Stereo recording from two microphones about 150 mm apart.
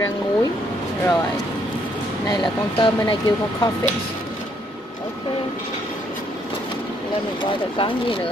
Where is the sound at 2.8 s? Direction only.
30° left (ahead or behind).